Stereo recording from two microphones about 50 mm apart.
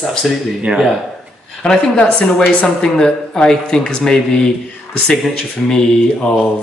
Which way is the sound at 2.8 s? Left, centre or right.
Centre.